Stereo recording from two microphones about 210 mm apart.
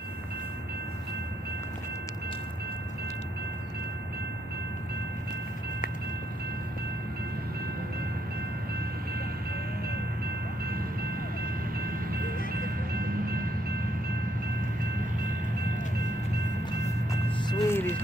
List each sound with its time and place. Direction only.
12.1 s music: 45° right (ahead or behind)
17.5 s music: 10° left (ahead or behind)